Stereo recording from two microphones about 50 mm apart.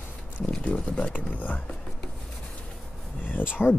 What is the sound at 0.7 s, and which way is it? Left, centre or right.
Speech, left.